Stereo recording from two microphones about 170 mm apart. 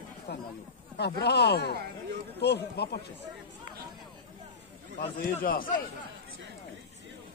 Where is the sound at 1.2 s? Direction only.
75° left (ahead or behind).